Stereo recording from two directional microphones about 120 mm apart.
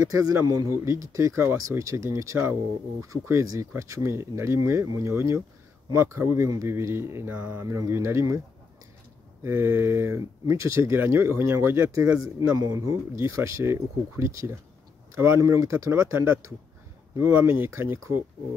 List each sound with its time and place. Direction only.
0.0 s speech: 25° right (ahead or behind)
7.6 s speech: 25° right (ahead or behind)
9.4 s speech: 15° right (ahead or behind)